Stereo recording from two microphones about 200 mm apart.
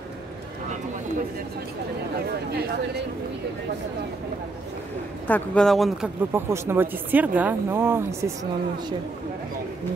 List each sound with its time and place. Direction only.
5.2 s speech: 5° left (ahead or behind); by 8.0 s 10° right (ahead or behind)